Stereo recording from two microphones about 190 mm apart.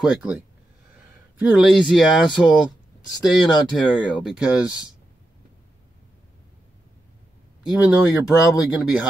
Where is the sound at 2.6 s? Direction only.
20° left (ahead or behind).